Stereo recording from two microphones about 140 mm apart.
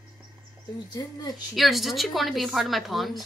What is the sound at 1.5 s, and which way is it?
A woman's voice, centre (ahead or behind).